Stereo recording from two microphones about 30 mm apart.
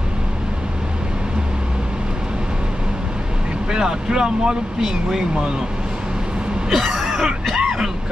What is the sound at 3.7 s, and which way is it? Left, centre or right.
Speech, right.